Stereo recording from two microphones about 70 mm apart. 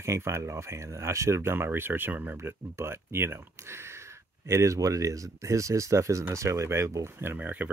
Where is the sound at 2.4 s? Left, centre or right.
Right.